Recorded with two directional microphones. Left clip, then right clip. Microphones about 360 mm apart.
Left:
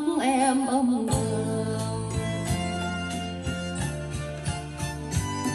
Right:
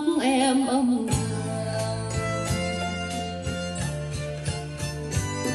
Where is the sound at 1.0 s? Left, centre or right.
Centre.